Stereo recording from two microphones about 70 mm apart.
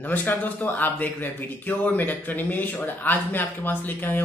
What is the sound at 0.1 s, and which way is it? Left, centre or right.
Speech, left.